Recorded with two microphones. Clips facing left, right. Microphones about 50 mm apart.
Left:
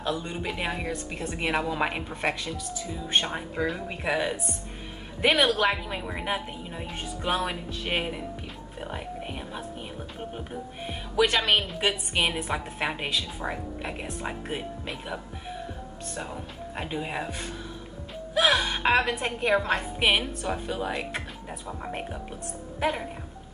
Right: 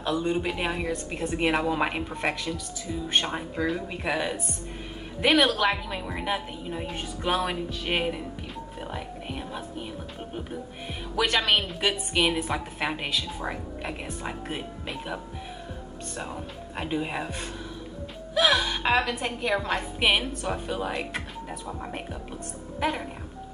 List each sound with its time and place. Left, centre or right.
0.2 s a woman's voice: centre
1.8 s a woman's voice: centre
11.2 s a woman's voice: centre
16.2 s a woman's voice: centre
18.3 s gasp: centre
19.2 s a woman's voice: centre
19.6 s speech: centre
20.2 s a woman's voice: centre